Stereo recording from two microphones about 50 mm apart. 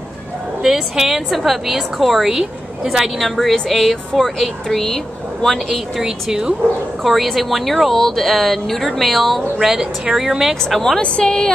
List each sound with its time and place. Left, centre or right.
0.6 s speech: centre
3.2 s speech: centre
5.9 s speech: centre
7.0 s speech: centre
10.5 s speech: centre
11.0 s speech: centre